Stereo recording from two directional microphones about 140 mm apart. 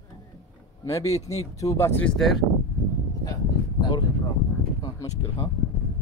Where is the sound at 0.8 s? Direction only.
25° left (ahead or behind).